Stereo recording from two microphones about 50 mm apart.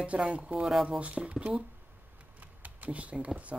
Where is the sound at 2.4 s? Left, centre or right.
Right.